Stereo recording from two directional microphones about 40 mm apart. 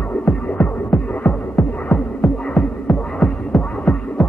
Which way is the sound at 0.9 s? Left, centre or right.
Left.